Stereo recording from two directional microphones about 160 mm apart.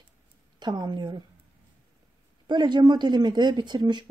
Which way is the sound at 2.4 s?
30° right (ahead or behind).